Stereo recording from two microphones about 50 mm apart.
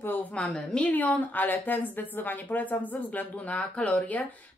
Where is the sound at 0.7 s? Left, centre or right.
Left.